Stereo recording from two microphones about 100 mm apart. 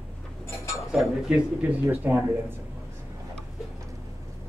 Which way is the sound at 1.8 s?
25° right (ahead or behind).